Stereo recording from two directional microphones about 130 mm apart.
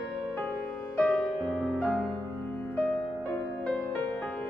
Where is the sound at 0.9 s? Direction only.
10° left (ahead or behind).